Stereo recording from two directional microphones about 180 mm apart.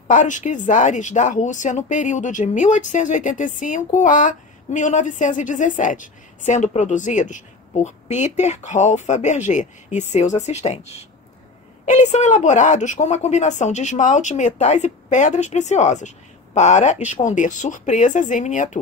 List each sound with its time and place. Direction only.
0.1 s a woman's voice: 45° left (ahead or behind)